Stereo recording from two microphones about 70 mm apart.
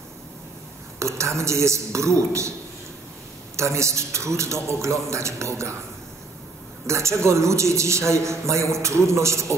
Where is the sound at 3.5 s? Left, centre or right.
Right.